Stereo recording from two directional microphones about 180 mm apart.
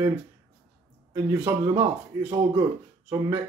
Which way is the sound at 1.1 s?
15° right (ahead or behind).